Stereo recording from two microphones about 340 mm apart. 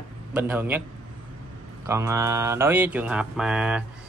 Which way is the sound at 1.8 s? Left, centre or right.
Centre.